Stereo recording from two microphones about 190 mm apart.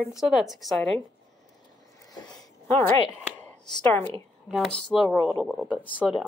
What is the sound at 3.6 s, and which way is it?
Speech, 20° left (ahead or behind).